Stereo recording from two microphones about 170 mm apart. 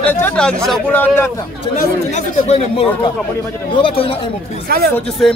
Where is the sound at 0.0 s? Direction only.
10° left (ahead or behind).